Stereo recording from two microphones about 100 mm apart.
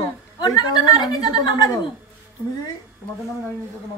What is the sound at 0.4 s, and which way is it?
A woman's voice, 45° left (ahead or behind).